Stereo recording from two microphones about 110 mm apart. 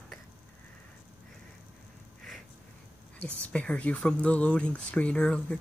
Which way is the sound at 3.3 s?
10° left (ahead or behind).